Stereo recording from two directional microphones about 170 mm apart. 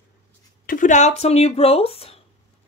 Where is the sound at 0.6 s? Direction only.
50° left (ahead or behind); by 2.2 s 35° left (ahead or behind).